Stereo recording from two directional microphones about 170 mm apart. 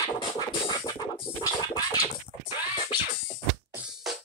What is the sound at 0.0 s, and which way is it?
Scratching, 25° left (ahead or behind).